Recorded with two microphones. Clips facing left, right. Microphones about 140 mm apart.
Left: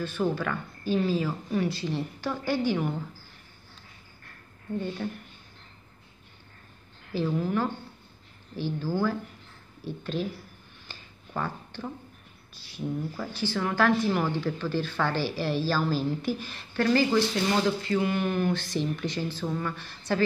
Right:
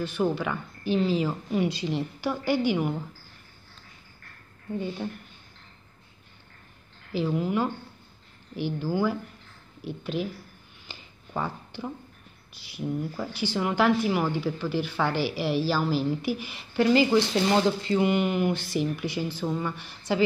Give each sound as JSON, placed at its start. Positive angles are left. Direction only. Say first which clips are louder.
{"t": 0.0, "sound": "a woman's voice", "louder": "right 2 dB", "side_deg": -15}
{"t": 4.7, "sound": "a woman's voice", "louder": "even", "side_deg": -10}
{"t": 7.1, "sound": "a woman's voice", "louder": "right 1 dB", "side_deg": -15}
{"t": 10.9, "sound": "a sound", "louder": "right 2 dB", "side_deg": -15}
{"t": 12.5, "sound": "a woman's voice", "louder": "right 2 dB", "side_deg": -15}